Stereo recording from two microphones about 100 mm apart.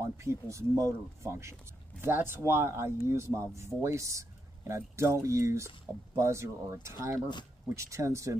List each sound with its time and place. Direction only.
0.0 s speech: 30° right (ahead or behind)